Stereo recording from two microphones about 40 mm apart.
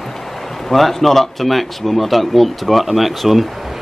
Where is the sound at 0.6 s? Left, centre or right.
Centre.